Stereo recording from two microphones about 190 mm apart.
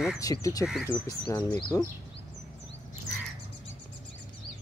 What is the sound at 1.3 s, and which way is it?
Speech, 20° left (ahead or behind).